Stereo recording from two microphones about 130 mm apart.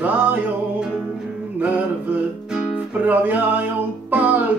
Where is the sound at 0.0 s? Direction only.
10° right (ahead or behind).